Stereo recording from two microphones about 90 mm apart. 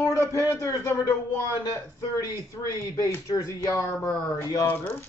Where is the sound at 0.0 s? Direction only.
35° left (ahead or behind).